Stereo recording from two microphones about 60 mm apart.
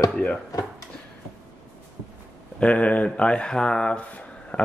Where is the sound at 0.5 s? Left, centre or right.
Left.